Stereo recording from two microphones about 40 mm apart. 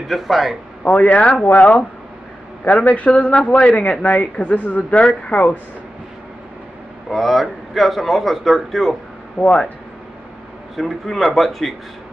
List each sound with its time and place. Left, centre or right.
0.1 s a man's voice: centre
0.8 s speech: left
7.1 s a man's voice: centre
9.4 s speech: centre
10.8 s a man's voice: centre